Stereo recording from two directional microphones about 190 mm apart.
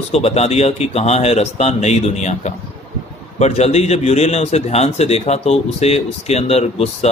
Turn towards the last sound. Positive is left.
turn(degrees=35)  # may be behind; listen again after turning